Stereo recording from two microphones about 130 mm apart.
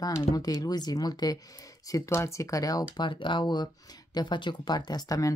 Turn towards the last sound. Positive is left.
turn(degrees=25)  # may be behind; listen again after turning